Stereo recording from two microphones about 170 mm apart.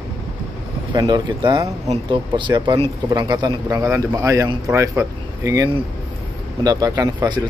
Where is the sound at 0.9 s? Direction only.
25° right (ahead or behind).